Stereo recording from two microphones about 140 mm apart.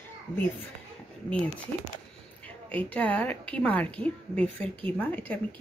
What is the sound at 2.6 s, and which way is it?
Speech, 10° left (ahead or behind).